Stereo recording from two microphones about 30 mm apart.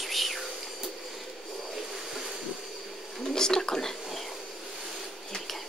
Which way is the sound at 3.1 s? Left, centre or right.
Centre.